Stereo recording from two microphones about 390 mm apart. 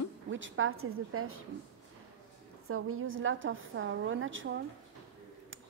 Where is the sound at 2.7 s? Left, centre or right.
Right.